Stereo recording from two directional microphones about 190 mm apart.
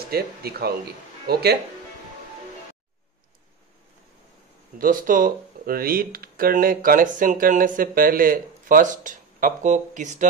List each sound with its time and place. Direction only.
0.1 s speech: 55° right (ahead or behind)
4.7 s speech: 45° right (ahead or behind)